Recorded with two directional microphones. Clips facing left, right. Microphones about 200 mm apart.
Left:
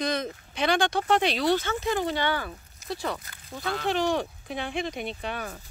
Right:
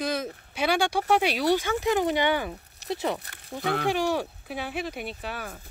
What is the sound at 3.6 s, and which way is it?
Speech, 60° right (ahead or behind).